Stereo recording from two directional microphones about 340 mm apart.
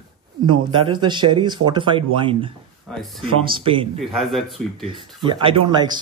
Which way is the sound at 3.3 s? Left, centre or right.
Centre.